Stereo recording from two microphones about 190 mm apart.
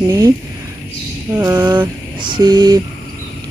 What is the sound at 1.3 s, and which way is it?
Speech, 15° right (ahead or behind).